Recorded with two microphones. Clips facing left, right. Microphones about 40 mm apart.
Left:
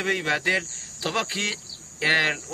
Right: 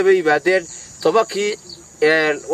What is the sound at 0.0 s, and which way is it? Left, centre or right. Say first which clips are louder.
A man's voice: right 10 dB; centre.